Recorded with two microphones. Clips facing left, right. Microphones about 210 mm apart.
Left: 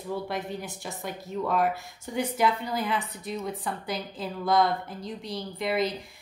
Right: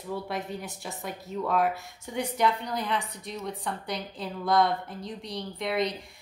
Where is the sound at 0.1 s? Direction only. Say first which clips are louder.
Left 1 dB; centre (ahead or behind).